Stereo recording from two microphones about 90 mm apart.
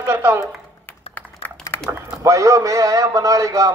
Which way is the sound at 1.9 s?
35° right (ahead or behind).